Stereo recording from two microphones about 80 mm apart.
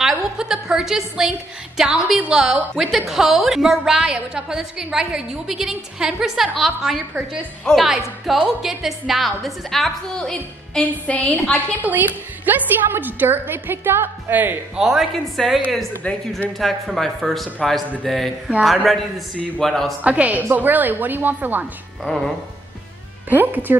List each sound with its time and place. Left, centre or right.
0.0 s a sound: centre
1.8 s a woman's voice: centre
11.8 s a woman's voice: right
14.8 s a woman's voice: centre
16.0 s speech: centre
16.5 s a woman's voice: centre
20.0 s a woman's voice: centre
22.0 s a woman's voice: centre
23.3 s a woman's voice: right